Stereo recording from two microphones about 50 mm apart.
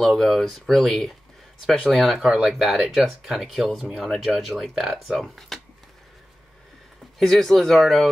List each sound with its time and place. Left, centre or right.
0.0 s speech: centre
2.1 s speech: centre
2.6 s speech: centre
7.2 s speech: centre